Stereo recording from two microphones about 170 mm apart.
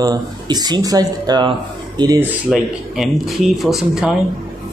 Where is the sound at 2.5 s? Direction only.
Centre (ahead or behind).